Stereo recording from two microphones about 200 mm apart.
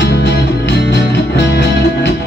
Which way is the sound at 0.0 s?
60° left (ahead or behind).